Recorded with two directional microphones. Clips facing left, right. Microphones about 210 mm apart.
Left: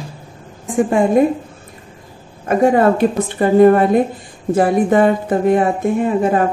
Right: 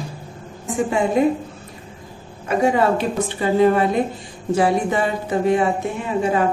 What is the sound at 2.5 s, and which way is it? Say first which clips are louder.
Speech: left 5 dB; 50° left (ahead or behind).